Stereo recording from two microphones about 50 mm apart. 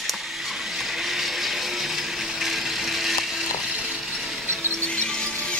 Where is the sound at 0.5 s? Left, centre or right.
Centre.